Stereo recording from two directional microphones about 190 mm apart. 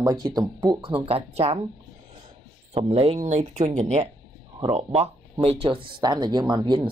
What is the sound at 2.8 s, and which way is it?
Speech, 30° right (ahead or behind).